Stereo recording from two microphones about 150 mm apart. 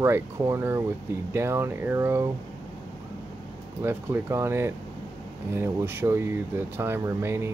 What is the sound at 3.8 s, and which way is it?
Speech, 15° right (ahead or behind).